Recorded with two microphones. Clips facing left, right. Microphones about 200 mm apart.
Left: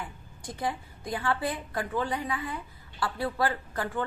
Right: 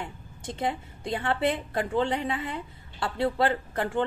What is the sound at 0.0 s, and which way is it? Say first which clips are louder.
A woman's voice: right 3 dB; 25° right (ahead or behind).